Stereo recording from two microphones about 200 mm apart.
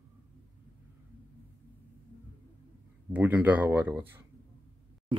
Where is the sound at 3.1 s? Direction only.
10° right (ahead or behind).